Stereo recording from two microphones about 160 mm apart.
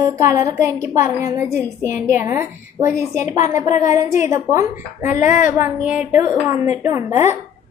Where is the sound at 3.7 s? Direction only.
50° left (ahead or behind).